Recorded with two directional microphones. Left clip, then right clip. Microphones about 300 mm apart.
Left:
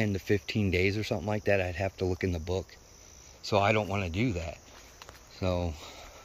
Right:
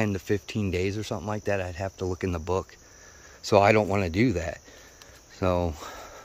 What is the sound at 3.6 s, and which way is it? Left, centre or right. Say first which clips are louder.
Speech: right 6 dB; right.